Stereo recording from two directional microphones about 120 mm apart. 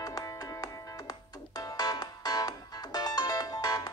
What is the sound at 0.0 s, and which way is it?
Music, 30° left (ahead or behind).